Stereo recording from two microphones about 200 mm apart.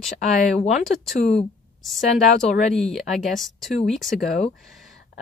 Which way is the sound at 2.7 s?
Centre (ahead or behind).